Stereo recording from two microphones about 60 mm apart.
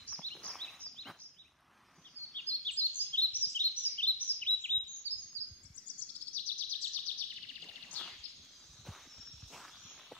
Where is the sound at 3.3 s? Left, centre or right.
Left.